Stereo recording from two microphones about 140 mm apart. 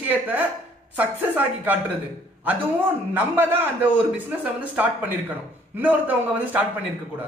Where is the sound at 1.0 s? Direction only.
10° right (ahead or behind).